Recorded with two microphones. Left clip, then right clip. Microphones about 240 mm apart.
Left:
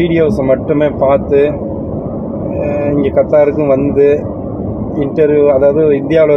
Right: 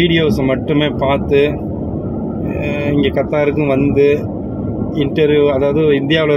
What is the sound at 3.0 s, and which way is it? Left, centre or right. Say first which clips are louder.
Speech: left 8 dB; right.